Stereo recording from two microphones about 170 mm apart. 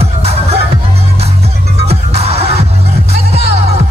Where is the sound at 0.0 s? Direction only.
40° right (ahead or behind).